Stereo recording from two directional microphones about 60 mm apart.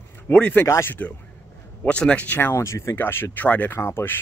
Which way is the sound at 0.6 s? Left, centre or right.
Left.